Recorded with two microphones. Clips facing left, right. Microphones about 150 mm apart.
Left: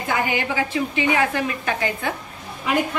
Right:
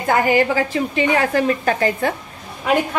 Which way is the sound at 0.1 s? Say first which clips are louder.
Right 8 dB; 45° right (ahead or behind).